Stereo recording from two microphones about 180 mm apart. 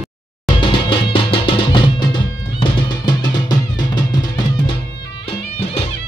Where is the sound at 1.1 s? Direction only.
30° left (ahead or behind).